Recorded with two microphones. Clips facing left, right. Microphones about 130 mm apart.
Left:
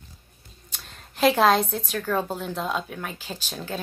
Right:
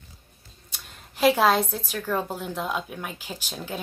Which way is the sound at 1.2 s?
10° right (ahead or behind).